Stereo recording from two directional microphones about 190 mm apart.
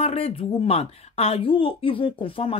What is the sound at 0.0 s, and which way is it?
Speech, 30° left (ahead or behind).